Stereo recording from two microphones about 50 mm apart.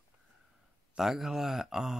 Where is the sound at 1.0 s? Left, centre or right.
Centre.